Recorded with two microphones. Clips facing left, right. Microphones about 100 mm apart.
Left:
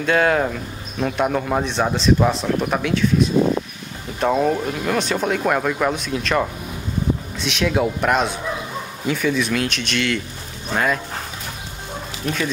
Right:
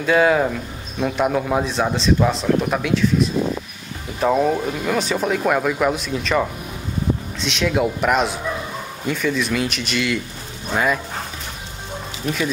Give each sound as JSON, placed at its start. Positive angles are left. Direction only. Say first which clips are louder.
{"t": 0.0, "sound": "speech", "louder": "right 2 dB", "side_deg": -5}